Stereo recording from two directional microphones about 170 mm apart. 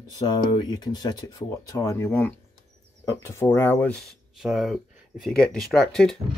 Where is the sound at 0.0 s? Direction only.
25° left (ahead or behind); by 6.1 s 5° left (ahead or behind).